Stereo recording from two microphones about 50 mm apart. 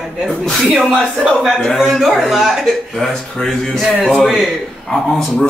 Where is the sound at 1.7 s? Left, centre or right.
Centre.